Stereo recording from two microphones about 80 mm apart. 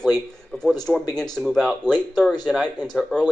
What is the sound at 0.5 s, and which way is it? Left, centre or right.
A man's voice, centre.